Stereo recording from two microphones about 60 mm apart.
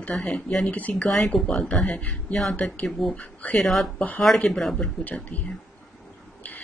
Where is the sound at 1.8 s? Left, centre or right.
Left.